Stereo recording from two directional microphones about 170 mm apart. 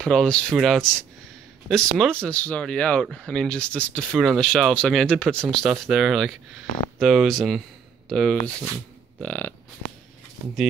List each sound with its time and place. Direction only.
0.0 s speech: 5° left (ahead or behind)